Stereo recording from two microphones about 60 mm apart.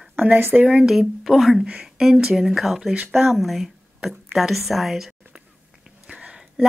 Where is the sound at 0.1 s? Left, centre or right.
Right.